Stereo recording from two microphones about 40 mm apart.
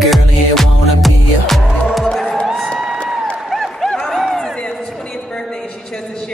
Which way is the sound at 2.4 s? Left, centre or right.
Centre.